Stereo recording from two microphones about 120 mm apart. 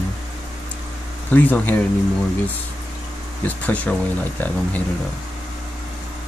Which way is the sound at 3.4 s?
10° left (ahead or behind).